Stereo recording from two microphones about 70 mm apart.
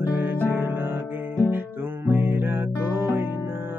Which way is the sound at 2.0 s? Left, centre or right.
Right.